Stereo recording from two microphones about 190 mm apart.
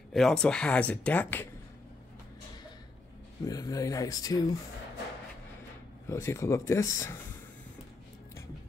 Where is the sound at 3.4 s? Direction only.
20° left (ahead or behind).